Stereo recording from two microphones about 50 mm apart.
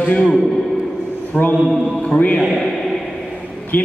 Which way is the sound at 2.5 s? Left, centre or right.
Centre.